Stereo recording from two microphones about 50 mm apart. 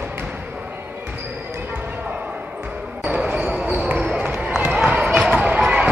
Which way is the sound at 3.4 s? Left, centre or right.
Centre.